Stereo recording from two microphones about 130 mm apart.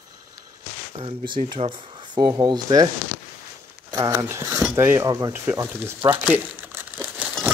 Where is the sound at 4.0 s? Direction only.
20° right (ahead or behind).